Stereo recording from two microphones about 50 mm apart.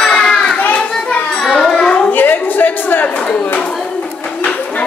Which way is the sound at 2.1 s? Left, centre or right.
Left.